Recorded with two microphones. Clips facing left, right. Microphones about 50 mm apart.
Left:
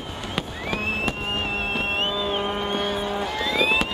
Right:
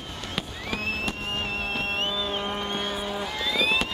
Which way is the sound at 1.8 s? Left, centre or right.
Left.